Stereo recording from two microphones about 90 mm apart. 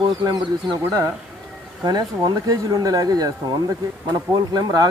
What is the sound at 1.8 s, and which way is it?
Speech, 50° right (ahead or behind).